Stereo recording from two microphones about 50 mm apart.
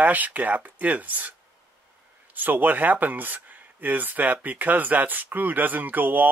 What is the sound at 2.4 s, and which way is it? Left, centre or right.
Speech, right.